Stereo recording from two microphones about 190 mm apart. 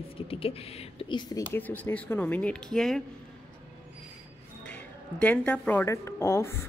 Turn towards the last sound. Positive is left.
turn(degrees=15)  # may be behind; listen again after turning